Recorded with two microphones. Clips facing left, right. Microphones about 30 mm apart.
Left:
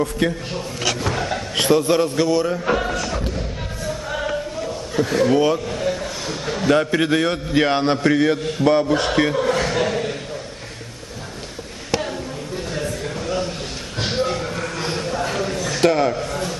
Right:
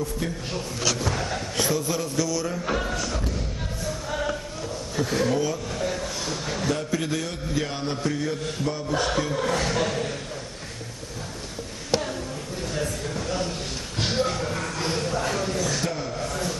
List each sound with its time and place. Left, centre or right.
0.2 s a man's voice: left
1.1 s a sound: left
1.5 s a man's voice: left
2.5 s speech: left
4.1 s a sound: left
4.9 s speech: left
5.3 s a man's voice: left
5.7 s a sound: centre
6.7 s a man's voice: left
9.4 s chuckle: centre
12.6 s a sound: left
15.8 s a man's voice: left